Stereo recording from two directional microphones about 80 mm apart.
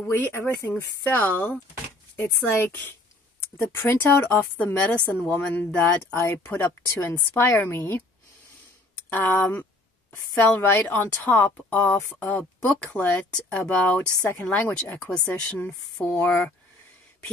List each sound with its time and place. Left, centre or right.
0.2 s a woman's voice: left
9.1 s a woman's voice: left